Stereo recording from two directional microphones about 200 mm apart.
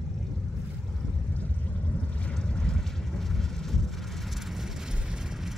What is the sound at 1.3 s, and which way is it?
Vehicle, 5° left (ahead or behind).